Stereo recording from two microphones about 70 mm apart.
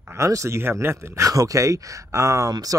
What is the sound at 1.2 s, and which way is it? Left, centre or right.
Speech, right.